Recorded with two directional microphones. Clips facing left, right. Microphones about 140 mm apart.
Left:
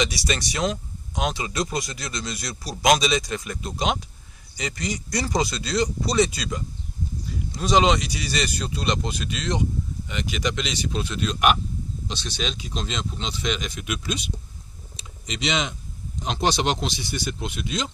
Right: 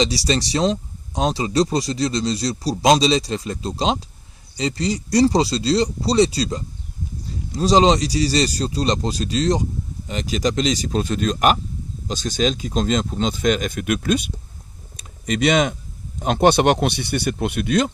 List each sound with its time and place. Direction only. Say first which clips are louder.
0.0 s speech: right 5 dB; 35° right (ahead or behind); by 14.3 s 55° right (ahead or behind)
15.0 s typing: right 11 dB; 50° right (ahead or behind)
16.2 s speech: right 8 dB; 55° right (ahead or behind)